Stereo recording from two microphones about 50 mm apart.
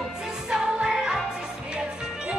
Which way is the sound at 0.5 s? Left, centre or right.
Centre.